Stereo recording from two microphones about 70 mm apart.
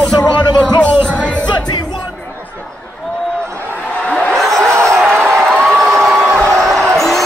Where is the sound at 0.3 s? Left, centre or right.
Left.